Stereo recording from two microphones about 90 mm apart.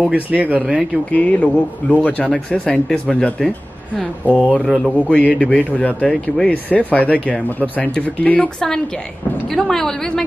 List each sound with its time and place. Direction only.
0.1 s speech: 15° right (ahead or behind)
1.1 s speech: 15° left (ahead or behind)
4.6 s speech: centre (ahead or behind)
4.9 s speech: 15° left (ahead or behind)